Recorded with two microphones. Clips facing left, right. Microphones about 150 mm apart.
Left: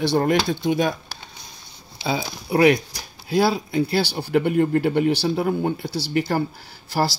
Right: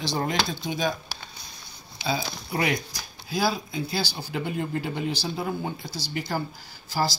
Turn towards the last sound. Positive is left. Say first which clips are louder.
# left 4 dB
turn(degrees=65)  # may be behind; listen again after turning